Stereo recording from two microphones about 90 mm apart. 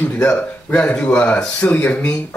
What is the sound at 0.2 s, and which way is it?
Speech, 15° left (ahead or behind).